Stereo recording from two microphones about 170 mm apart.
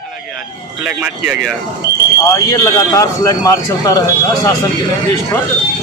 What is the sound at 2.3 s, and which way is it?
A man's voice, 20° left (ahead or behind).